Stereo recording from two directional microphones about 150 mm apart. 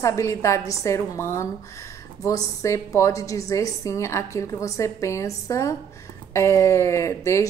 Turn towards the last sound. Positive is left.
turn(degrees=20)  # may be behind; listen again after turning